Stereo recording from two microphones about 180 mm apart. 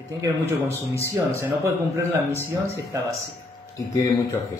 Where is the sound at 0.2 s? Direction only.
15° right (ahead or behind).